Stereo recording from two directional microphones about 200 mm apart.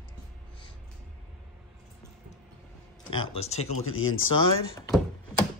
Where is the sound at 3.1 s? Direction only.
30° left (ahead or behind).